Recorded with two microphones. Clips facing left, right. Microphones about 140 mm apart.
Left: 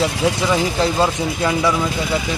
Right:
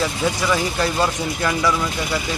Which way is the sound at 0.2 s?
20° left (ahead or behind).